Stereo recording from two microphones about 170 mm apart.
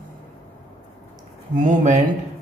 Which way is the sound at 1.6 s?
45° right (ahead or behind).